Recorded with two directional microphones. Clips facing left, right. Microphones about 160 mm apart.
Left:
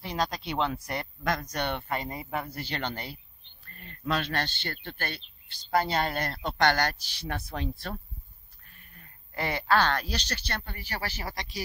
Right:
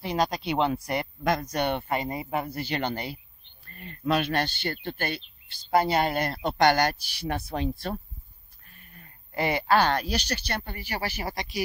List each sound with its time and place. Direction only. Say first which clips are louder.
0.0 s speech: right 4 dB; 15° right (ahead or behind)
9.3 s speech: right 3 dB; 15° right (ahead or behind)